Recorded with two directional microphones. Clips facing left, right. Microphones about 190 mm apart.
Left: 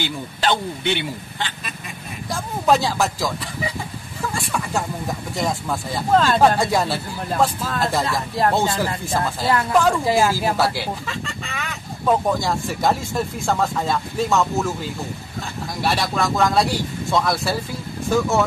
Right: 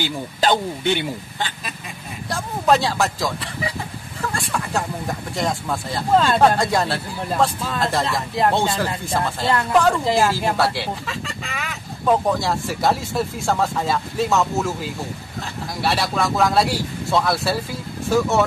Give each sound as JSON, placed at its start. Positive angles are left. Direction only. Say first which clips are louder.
{"t": 0.0, "sound": "speech", "louder": "right 2 dB", "side_deg": -40}
{"t": 2.2, "sound": "speech", "louder": "even", "side_deg": 0}